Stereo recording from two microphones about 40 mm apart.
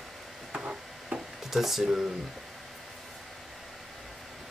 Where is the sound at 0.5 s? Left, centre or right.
Right.